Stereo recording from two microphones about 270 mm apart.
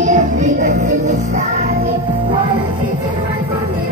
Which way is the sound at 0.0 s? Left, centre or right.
Right.